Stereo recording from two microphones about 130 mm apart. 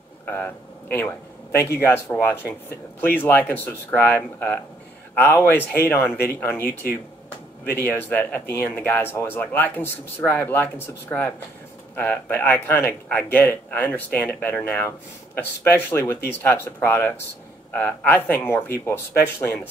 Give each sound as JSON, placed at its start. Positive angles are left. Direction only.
{"t": 0.2, "sound": "speech", "side_deg": 15}